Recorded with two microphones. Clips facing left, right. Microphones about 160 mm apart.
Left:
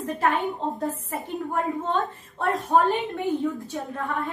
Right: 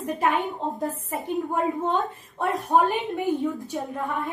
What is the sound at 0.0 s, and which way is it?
A woman's voice, 15° right (ahead or behind).